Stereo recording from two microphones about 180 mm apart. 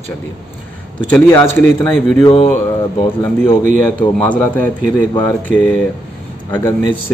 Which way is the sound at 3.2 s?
10° left (ahead or behind).